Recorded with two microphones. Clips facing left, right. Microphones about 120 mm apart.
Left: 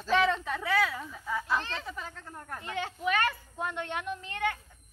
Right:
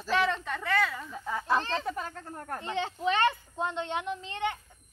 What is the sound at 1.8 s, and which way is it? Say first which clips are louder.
Speech: right 6 dB; 50° right (ahead or behind).